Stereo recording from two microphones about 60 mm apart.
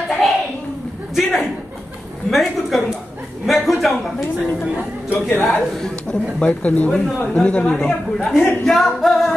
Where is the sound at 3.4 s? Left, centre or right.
Centre.